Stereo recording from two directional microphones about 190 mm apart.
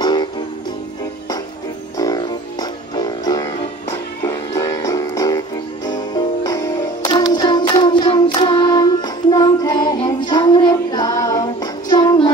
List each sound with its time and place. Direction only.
0.0 s music: 20° left (ahead or behind)
2.0 s music: 20° left (ahead or behind)